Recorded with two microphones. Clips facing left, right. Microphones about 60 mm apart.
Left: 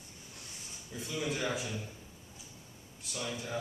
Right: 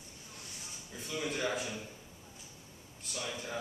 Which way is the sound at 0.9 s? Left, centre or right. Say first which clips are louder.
Left 2 dB; centre.